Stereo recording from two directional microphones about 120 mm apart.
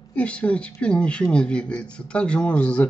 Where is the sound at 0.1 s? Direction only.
10° left (ahead or behind).